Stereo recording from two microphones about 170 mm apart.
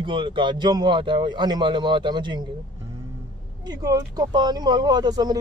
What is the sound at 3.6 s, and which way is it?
Speech, 20° right (ahead or behind).